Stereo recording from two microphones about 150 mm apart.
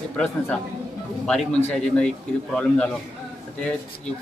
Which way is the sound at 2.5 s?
5° left (ahead or behind).